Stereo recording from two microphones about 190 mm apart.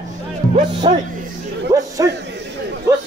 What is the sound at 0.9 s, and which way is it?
Speech, 25° right (ahead or behind).